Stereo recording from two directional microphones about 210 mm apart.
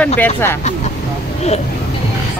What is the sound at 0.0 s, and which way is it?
Speech, 10° left (ahead or behind).